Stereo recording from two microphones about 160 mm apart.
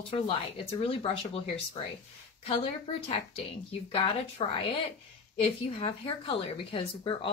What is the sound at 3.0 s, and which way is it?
Speech, 35° left (ahead or behind).